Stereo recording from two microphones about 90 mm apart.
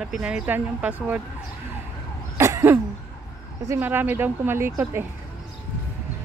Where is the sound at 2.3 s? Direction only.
30° right (ahead or behind).